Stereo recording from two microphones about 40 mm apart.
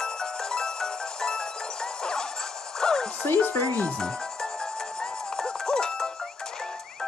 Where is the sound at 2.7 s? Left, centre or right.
Centre.